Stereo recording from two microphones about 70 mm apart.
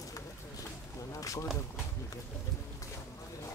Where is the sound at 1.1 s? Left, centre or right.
Left.